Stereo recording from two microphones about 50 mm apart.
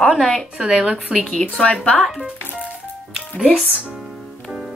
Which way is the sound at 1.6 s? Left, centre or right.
Left.